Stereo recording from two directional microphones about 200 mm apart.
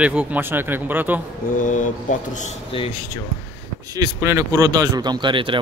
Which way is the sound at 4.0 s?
15° right (ahead or behind).